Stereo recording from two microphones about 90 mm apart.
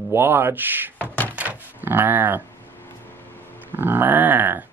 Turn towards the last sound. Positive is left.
turn(degrees=-20)  # may be behind; listen again after turning